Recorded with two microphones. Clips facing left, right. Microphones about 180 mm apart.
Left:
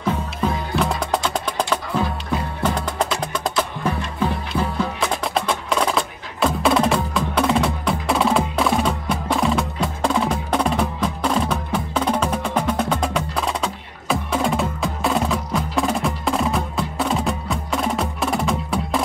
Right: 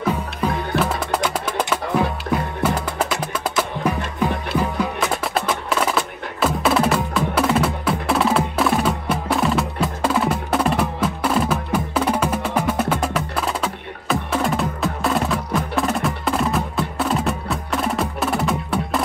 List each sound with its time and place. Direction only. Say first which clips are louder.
0.1 s music: left 3 dB; 5° right (ahead or behind)